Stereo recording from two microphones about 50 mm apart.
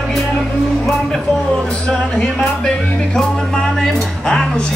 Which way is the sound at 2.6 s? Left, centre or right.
Centre.